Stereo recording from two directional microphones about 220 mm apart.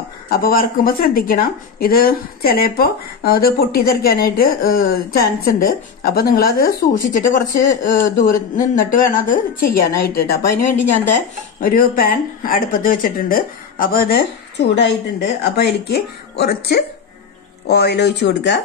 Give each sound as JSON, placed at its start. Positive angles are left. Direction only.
{"t": 0.3, "sound": "a woman's voice", "side_deg": 40}